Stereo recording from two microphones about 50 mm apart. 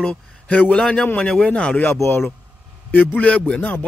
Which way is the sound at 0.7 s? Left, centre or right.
Centre.